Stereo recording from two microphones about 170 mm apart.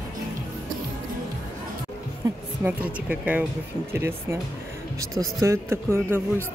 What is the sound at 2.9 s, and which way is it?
Speech, 10° right (ahead or behind).